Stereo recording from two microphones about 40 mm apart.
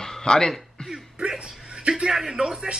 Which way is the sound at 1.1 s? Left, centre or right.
Right.